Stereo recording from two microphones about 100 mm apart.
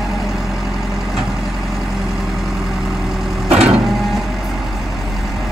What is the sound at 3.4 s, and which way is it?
Vehicle, 90° right.